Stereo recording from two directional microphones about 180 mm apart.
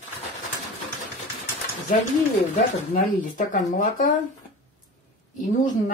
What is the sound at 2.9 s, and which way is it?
Speech, 45° left (ahead or behind).